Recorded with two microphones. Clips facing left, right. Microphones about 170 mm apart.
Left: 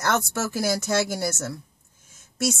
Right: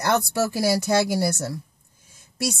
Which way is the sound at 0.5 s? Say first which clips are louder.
Right 2 dB; 10° right (ahead or behind).